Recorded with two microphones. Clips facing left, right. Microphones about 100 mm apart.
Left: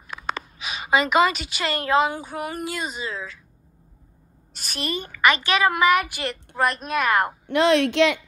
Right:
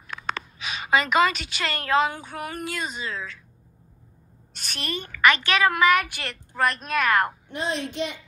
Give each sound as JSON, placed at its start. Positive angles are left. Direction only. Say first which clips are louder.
{"t": 0.1, "sound": "speech", "louder": "left 1 dB", "side_deg": 5}
{"t": 4.6, "sound": "a woman's voice", "louder": "left 3 dB", "side_deg": 5}
{"t": 7.4, "sound": "a woman's voice", "louder": "left 11 dB", "side_deg": 75}